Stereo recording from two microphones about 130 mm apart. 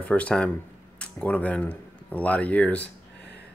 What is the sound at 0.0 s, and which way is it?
Speech, 10° left (ahead or behind).